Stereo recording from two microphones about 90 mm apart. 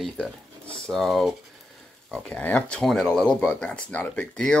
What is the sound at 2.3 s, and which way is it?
Speech, 10° left (ahead or behind).